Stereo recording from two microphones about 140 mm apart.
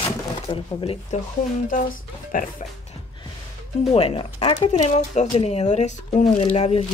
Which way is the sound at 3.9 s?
40° left (ahead or behind).